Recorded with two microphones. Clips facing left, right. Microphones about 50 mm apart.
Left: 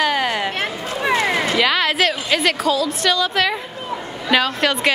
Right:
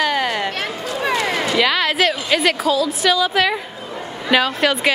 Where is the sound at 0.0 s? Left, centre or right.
Centre.